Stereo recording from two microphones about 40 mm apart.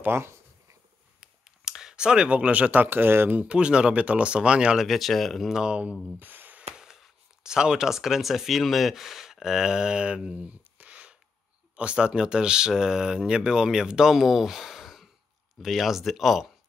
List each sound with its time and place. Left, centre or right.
1.2 s a sound: centre; by 2.7 s right
2.7 s speech: right
3.4 s speech: right
4.8 s speech: centre
5.7 s speech: right
6.1 s a sound: right
7.4 s speech: centre